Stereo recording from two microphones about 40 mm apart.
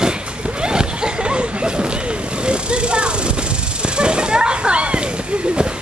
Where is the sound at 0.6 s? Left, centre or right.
Right.